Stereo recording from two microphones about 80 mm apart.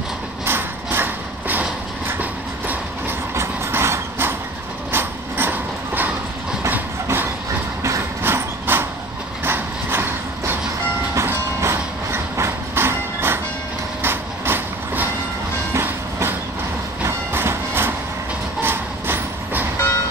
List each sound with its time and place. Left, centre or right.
0.5 s a sound: right
2.0 s train: right
3.3 s vehicle: right
4.9 s train: right
7.8 s horse: right
9.4 s a sound: right
11.1 s train: right
14.0 s vehicle: right
15.7 s train: right
18.6 s vehicle: right